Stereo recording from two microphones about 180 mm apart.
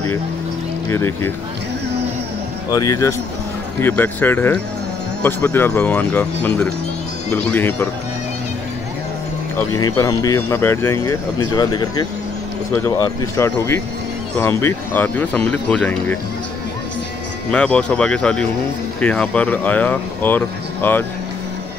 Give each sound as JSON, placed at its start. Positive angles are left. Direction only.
{"t": 0.9, "sound": "speech", "side_deg": 15}
{"t": 2.7, "sound": "speech", "side_deg": 20}
{"t": 9.6, "sound": "speech", "side_deg": 20}
{"t": 17.5, "sound": "speech", "side_deg": 5}